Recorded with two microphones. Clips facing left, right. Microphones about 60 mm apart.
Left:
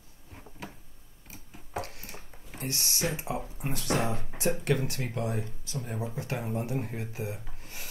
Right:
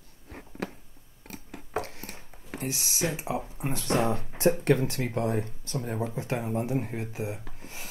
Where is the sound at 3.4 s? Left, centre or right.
Right.